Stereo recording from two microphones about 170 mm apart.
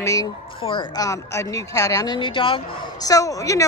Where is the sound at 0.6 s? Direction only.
25° left (ahead or behind).